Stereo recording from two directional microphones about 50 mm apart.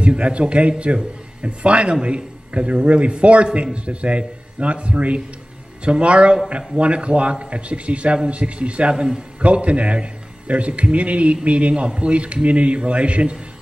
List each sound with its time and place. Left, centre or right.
0.0 s a man's voice: right